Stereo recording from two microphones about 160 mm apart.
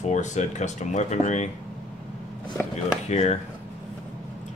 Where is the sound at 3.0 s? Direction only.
45° left (ahead or behind).